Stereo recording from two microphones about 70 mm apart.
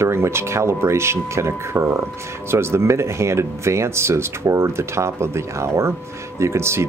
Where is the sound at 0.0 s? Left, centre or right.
Right.